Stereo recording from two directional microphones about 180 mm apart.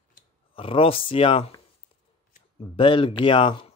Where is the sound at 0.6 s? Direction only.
30° left (ahead or behind).